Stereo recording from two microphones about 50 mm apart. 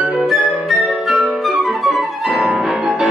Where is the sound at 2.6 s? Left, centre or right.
Centre.